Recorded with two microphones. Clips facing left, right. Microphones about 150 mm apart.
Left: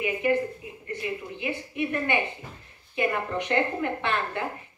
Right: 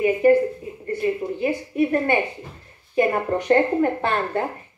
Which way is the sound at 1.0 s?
40° right (ahead or behind).